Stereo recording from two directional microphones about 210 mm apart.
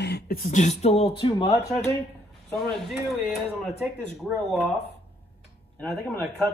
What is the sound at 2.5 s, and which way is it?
Speech, centre (ahead or behind).